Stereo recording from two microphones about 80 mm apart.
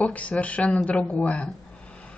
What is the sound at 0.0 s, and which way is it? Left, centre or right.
Speech, centre.